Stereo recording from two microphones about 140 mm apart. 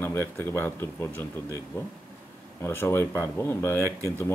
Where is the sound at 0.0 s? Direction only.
20° left (ahead or behind).